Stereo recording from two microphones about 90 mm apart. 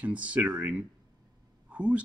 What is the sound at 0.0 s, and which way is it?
A man's voice, 15° right (ahead or behind).